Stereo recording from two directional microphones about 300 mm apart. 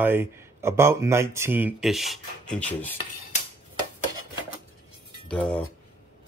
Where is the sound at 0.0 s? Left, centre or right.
Centre.